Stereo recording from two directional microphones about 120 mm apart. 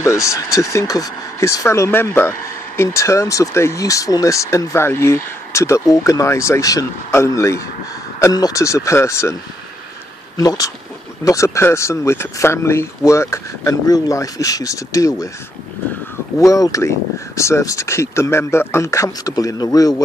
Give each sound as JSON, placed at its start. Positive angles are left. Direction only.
{"t": 0.0, "sound": "speech", "side_deg": 25}
{"t": 10.3, "sound": "speech", "side_deg": 30}
{"t": 16.3, "sound": "speech", "side_deg": 30}